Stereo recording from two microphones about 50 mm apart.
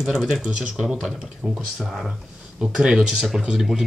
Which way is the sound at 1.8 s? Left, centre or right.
Centre.